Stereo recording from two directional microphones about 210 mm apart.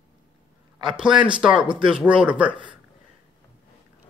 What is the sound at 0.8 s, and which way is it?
Speech, 5° right (ahead or behind).